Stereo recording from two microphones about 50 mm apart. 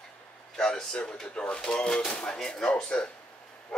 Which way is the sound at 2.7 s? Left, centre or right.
Left.